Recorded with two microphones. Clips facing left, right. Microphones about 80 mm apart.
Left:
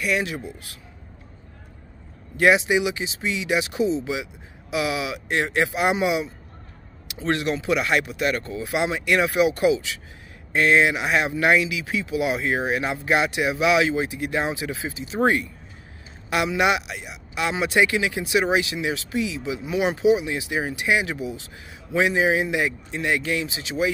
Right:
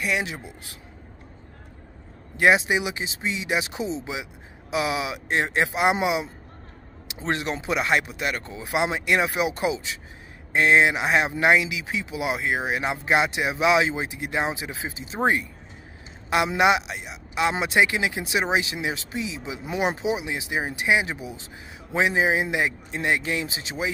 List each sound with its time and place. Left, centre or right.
0.0 s speech: right
2.3 s speech: right
16.4 s speech: right
20.0 s speech: right